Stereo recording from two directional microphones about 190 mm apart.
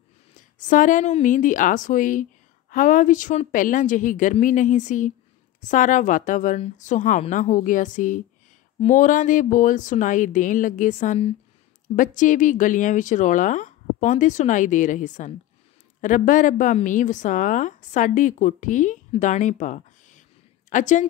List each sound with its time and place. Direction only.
0.4 s a woman's voice: 40° left (ahead or behind)